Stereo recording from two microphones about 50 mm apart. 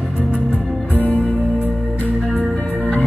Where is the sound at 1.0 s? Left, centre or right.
Left.